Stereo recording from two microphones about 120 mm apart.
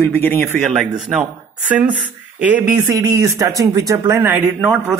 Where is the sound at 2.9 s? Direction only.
30° right (ahead or behind).